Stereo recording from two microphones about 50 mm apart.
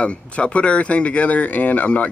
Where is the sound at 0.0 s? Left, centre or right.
Left.